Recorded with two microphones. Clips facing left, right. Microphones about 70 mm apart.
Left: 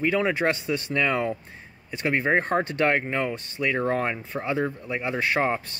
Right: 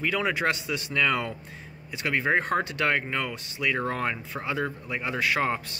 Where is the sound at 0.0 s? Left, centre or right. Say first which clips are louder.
Left 3 dB; left.